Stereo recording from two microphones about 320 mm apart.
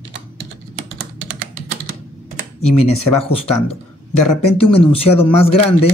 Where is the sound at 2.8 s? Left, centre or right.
Centre.